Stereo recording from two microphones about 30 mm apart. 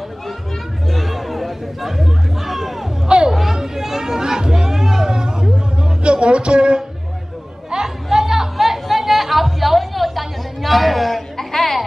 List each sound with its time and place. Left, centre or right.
0.8 s chatter: centre; by 5.5 s right
6.0 s music: right
7.7 s a sound: centre
11.3 s music: centre